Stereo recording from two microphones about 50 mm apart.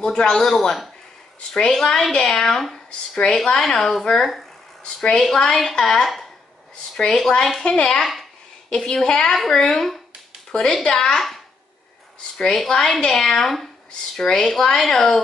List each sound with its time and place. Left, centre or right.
0.0 s a woman's voice: centre
4.8 s a woman's voice: centre
5.2 s a woman's voice: centre
7.6 s speech: centre
8.0 s speech: centre
8.7 s a woman's voice: centre